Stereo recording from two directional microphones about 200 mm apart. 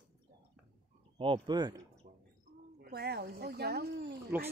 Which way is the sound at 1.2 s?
25° right (ahead or behind).